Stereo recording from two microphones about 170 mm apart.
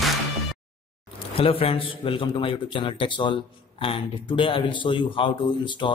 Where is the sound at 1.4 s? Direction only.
35° left (ahead or behind).